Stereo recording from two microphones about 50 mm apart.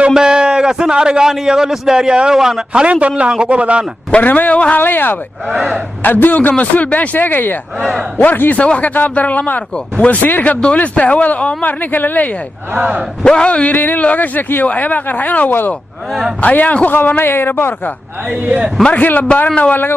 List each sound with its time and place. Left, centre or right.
0.1 s a man's voice: centre
2.8 s a man's voice: right
4.2 s speech: left
4.7 s speech: left
5.5 s speech: centre
6.0 s speech: left
12.7 s a man's voice: right
13.2 s speech: centre
13.7 s a man's voice: left
18.9 s speech: left